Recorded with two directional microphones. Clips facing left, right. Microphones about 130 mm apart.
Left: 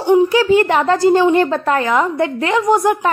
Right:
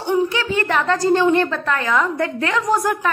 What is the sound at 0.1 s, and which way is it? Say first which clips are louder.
A woman's voice: left 8 dB; 35° left (ahead or behind).